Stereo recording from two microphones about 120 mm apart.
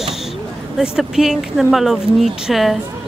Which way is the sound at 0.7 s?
5° right (ahead or behind).